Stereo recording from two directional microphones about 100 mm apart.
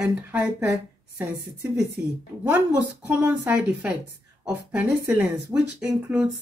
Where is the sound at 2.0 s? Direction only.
20° right (ahead or behind).